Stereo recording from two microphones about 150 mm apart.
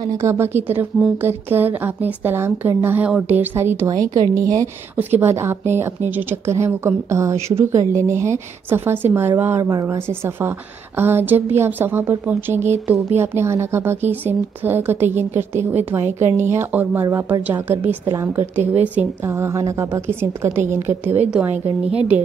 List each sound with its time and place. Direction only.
0.0 s a woman's voice: 20° right (ahead or behind)